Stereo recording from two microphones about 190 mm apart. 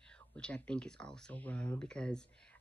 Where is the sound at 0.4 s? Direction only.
5° left (ahead or behind).